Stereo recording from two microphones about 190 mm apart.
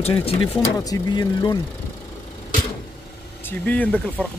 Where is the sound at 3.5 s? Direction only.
10° left (ahead or behind).